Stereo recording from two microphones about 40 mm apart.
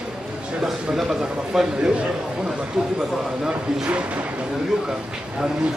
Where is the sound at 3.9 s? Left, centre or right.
Right.